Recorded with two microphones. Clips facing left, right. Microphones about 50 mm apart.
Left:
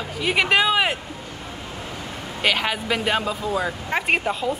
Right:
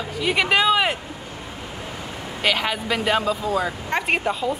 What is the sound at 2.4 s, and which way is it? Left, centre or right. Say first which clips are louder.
Speech: even; centre.